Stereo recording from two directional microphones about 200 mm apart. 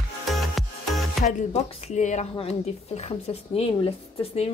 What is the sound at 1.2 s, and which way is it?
A woman's voice, 35° left (ahead or behind).